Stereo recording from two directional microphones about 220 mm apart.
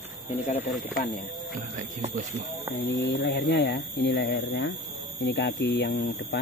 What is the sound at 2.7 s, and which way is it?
Speech, 50° left (ahead or behind).